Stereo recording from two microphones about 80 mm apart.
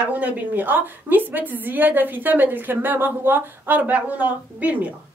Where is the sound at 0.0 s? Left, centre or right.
Centre.